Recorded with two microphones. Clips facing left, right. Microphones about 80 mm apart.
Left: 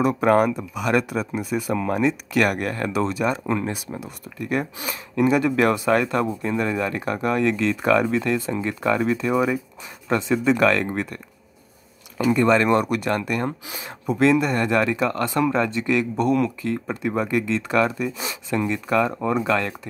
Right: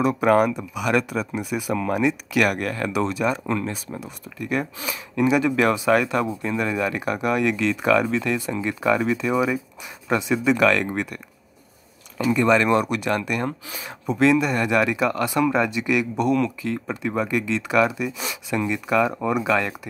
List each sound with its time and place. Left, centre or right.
0.0 s speech: centre
3.5 s speech: centre
3.9 s speech: centre
12.4 s speech: centre
13.5 s speech: centre
13.8 s speech: centre
16.3 s speech: centre